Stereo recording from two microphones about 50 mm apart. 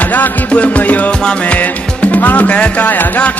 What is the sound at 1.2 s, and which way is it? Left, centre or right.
Music, centre.